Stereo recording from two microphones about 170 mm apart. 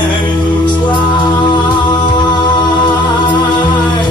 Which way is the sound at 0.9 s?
25° left (ahead or behind).